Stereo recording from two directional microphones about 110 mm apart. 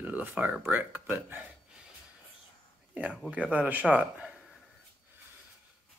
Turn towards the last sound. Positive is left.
turn(degrees=-10)  # may be behind; listen again after turning